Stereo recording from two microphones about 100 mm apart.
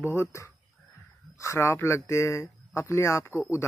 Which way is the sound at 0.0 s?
25° left (ahead or behind).